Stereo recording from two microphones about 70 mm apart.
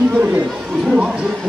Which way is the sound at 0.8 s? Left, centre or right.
Centre.